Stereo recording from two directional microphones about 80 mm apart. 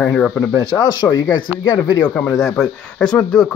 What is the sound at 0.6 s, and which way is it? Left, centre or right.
Speech, left.